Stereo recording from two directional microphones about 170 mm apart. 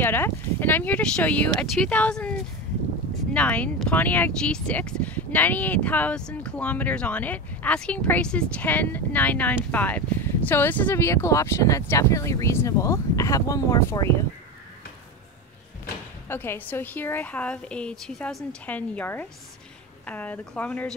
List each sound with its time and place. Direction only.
0.0 s speech: 10° left (ahead or behind)
3.3 s speech: 10° left (ahead or behind)
16.3 s speech: 10° left (ahead or behind)